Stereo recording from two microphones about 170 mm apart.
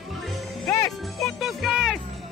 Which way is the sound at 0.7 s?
15° left (ahead or behind).